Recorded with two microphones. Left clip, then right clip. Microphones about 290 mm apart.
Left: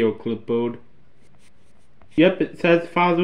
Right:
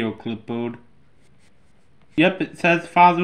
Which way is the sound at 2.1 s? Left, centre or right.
Centre.